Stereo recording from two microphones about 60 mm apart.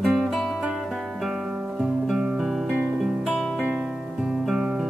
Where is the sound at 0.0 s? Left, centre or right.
Centre.